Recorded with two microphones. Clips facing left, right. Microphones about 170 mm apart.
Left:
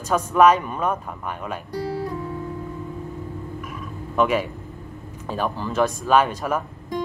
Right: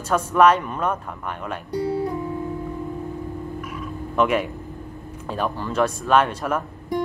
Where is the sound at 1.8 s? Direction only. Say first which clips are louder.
Right 4 dB; 20° right (ahead or behind).